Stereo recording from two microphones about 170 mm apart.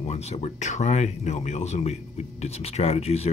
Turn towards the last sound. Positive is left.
turn(degrees=40)  # may be behind; listen again after turning